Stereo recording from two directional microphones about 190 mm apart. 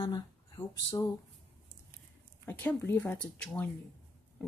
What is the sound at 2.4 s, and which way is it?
Speech, 10° left (ahead or behind).